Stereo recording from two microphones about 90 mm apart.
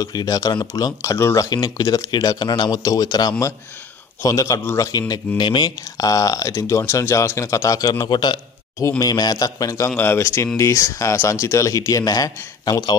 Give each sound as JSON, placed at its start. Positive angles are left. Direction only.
{"t": 0.0, "sound": "speech", "side_deg": 45}
{"t": 1.1, "sound": "speech", "side_deg": 35}
{"t": 1.5, "sound": "speech", "side_deg": 50}
{"t": 4.6, "sound": "speech", "side_deg": 25}
{"t": 4.8, "sound": "speech", "side_deg": 45}
{"t": 5.4, "sound": "speech", "side_deg": 60}
{"t": 5.9, "sound": "speech", "side_deg": 40}
{"t": 8.1, "sound": "speech", "side_deg": 55}
{"t": 9.9, "sound": "speech", "side_deg": 25}